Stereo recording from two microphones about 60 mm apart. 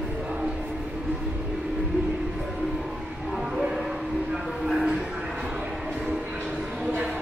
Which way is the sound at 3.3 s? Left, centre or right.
Centre.